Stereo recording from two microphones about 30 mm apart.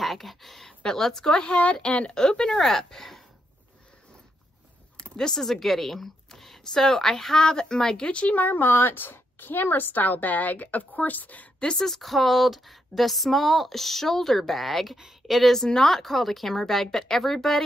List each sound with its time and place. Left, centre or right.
0.0 s a sound: centre
0.7 s a woman's voice: centre; by 2.1 s left
2.1 s speech: left
2.5 s speech: centre
4.9 s a sound: left
5.3 s speech: centre
8.1 s speech: left
8.4 s speech: left
9.5 s a woman's voice: left
11.8 s a woman's voice: centre
15.5 s speech: centre